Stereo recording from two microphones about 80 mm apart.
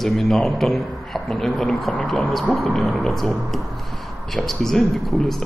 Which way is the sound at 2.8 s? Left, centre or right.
Centre.